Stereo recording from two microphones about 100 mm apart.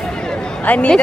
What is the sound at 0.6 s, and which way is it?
Speech, 15° left (ahead or behind).